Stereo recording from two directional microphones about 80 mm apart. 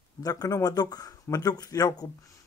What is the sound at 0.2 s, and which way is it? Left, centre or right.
Speech, left.